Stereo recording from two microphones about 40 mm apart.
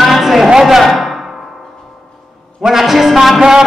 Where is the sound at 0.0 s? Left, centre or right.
Centre.